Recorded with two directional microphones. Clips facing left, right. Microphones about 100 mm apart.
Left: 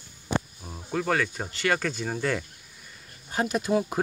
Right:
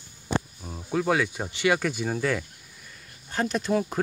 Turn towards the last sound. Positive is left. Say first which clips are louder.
# even
turn(degrees=10)  # may be behind; listen again after turning